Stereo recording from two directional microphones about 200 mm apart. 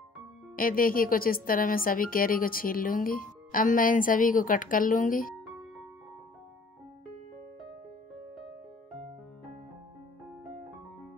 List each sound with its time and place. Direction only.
0.6 s speech: 45° left (ahead or behind)
5.3 s music: centre (ahead or behind)